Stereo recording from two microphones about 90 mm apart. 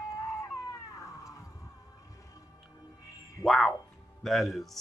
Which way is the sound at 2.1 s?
40° left (ahead or behind).